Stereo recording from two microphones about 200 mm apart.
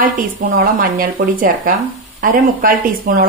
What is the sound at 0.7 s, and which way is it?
A woman's voice, 45° right (ahead or behind).